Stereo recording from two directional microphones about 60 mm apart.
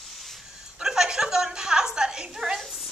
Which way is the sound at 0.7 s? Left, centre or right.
Centre.